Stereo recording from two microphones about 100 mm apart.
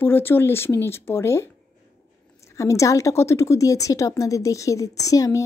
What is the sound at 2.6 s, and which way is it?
A woman's voice, 30° left (ahead or behind).